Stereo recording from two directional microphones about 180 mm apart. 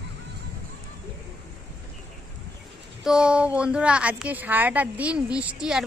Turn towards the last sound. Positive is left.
turn(degrees=-5)  # may be behind; listen again after turning